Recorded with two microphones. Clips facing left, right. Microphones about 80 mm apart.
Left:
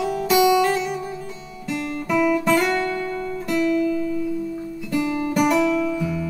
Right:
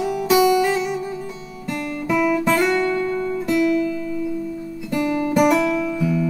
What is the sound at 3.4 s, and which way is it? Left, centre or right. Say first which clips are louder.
Music: right 2 dB; centre.